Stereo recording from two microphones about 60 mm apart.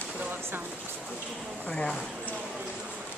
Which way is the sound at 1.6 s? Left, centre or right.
Centre.